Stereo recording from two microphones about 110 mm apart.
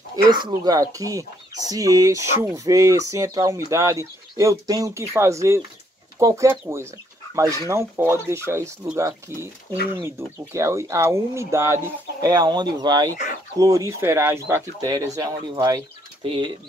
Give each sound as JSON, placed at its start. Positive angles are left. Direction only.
{"t": 0.1, "sound": "speech", "side_deg": -40}
{"t": 14.9, "sound": "speech", "side_deg": -35}
{"t": 16.3, "sound": "speech", "side_deg": -45}